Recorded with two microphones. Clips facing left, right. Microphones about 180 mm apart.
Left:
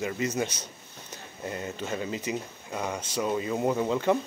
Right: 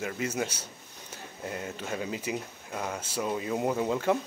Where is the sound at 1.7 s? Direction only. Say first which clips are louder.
Left 2 dB; 5° right (ahead or behind).